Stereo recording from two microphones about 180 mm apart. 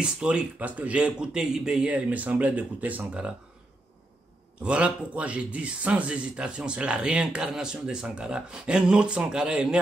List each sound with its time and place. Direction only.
0.0 s speech: 5° right (ahead or behind)
4.6 s speech: 5° right (ahead or behind)